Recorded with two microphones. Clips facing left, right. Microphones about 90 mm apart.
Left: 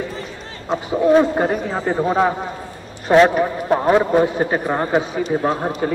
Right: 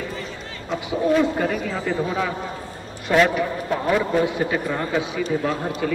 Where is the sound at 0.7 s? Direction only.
40° left (ahead or behind).